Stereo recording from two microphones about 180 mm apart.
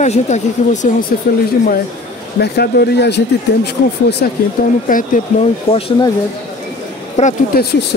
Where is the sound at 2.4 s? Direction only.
65° left (ahead or behind).